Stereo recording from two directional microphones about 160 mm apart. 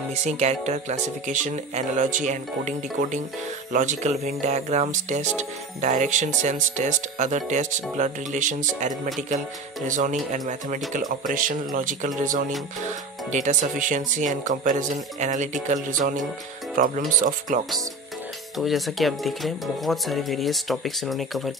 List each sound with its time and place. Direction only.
0.1 s speech: 45° right (ahead or behind)
18.6 s speech: centre (ahead or behind)